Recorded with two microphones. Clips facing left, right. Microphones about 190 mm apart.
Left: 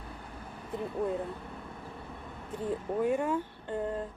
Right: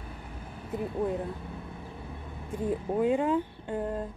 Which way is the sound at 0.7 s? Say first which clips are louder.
Right 2 dB; 10° right (ahead or behind).